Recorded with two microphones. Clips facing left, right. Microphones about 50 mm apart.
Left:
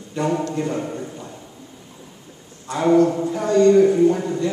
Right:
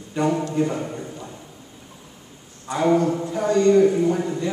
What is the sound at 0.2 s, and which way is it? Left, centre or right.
Speech, centre.